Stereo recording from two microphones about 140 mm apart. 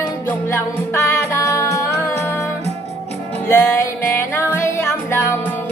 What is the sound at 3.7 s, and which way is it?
Music, 20° left (ahead or behind).